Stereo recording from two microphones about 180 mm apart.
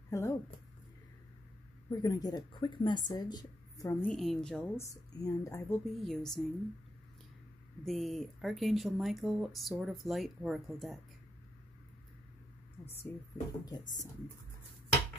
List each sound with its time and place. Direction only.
0.1 s speech: 15° left (ahead or behind)
1.9 s speech: 20° left (ahead or behind)
4.1 s speech: centre (ahead or behind)
4.8 s a woman's voice: 15° left (ahead or behind)
5.9 s speech: centre (ahead or behind)
7.8 s speech: centre (ahead or behind)
13.1 s a woman's voice: 10° left (ahead or behind)
13.7 s speech: 20° left (ahead or behind)